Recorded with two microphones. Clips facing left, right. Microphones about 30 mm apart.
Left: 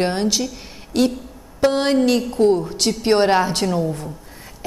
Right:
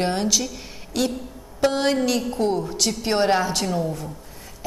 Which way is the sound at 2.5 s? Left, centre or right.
Left.